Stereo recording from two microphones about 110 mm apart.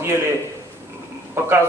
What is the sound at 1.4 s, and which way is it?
Speech, 25° right (ahead or behind).